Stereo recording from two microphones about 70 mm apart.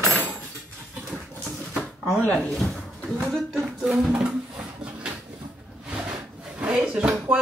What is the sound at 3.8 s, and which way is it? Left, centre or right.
Speech, centre.